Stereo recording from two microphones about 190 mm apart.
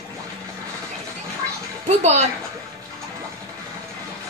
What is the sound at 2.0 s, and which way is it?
Speech, 35° right (ahead or behind).